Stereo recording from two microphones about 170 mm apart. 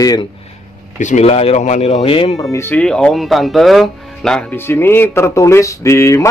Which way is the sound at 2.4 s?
15° left (ahead or behind).